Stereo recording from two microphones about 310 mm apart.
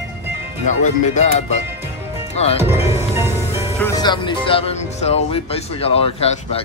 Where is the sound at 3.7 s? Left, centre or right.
Centre.